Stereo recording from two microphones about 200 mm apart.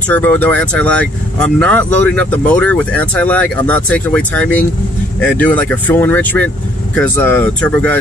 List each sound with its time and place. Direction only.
0.1 s speech: 10° left (ahead or behind)